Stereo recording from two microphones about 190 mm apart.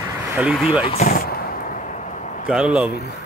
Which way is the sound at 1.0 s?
50° left (ahead or behind).